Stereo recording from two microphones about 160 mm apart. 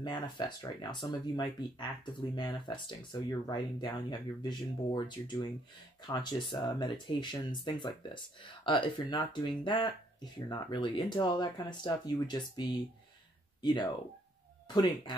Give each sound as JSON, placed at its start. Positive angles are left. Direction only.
{"t": 0.0, "sound": "speech", "side_deg": 30}